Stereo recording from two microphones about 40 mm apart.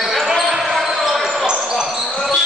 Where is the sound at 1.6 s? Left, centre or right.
Centre.